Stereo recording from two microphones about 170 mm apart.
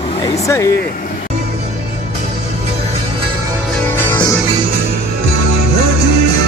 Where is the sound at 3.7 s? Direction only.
10° left (ahead or behind).